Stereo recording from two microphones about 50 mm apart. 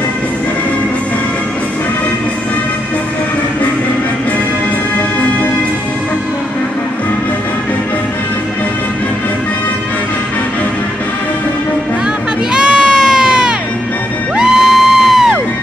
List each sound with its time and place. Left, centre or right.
12.5 s crowd: centre
14.3 s music: centre